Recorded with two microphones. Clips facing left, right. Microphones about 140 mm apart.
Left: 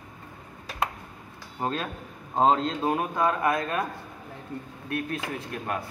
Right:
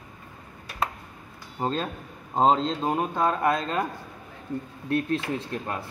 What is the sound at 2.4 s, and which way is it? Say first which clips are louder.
Speech: right 1 dB; 25° right (ahead or behind).